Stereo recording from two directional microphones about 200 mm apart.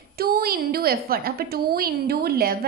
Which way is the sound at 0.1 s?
50° right (ahead or behind).